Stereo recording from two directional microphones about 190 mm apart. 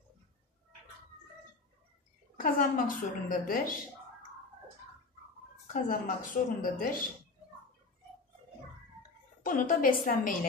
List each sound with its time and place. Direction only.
2.3 s a woman's voice: 45° left (ahead or behind)
5.7 s a woman's voice: 45° left (ahead or behind)
9.4 s a woman's voice: 45° left (ahead or behind)